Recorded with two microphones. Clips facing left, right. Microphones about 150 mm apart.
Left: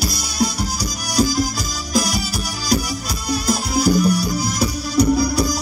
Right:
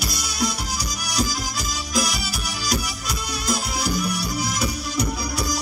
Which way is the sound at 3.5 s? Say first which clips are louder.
Left 7 dB; 40° left (ahead or behind).